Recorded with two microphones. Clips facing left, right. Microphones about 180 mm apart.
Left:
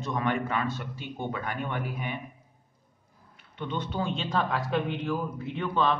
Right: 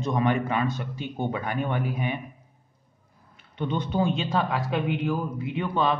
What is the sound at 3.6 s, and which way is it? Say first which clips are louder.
A man's voice: right 6 dB; 15° right (ahead or behind).